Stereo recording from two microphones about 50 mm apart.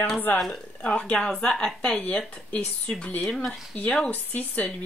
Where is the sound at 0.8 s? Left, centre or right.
Left.